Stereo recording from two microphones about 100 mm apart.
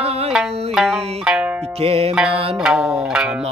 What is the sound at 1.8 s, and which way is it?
Music, 70° right (ahead or behind).